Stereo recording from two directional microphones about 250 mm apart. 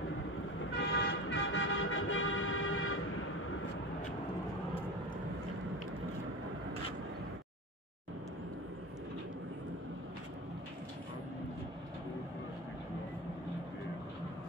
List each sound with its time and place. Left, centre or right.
0.7 s toot: left